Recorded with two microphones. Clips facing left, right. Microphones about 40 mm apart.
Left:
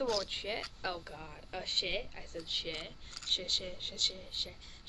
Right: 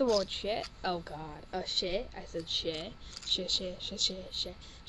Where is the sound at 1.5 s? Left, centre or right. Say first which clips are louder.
Right 3 dB; left.